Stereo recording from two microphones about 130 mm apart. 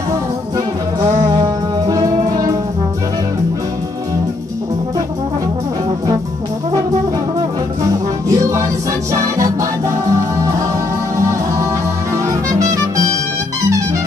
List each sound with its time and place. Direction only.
1.4 s music: 25° right (ahead or behind)
8.3 s music: 25° right (ahead or behind)
12.3 s music: 25° right (ahead or behind)